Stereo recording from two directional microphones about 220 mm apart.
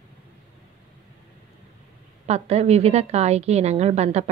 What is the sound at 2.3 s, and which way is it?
A woman's voice, 30° right (ahead or behind).